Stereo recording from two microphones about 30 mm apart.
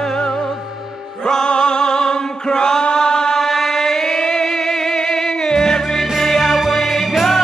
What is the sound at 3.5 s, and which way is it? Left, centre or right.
Music, centre.